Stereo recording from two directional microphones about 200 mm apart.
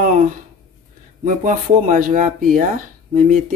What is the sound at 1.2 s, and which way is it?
Speech, 40° right (ahead or behind).